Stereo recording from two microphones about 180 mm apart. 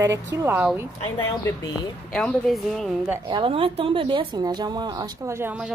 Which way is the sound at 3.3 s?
25° right (ahead or behind).